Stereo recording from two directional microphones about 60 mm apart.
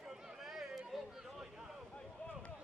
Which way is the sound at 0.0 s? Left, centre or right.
Centre.